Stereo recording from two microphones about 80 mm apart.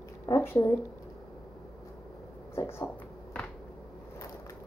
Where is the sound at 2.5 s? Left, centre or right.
Left.